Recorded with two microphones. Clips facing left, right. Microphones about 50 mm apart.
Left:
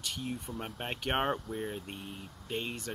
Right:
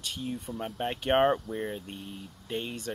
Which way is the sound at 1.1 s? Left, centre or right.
Centre.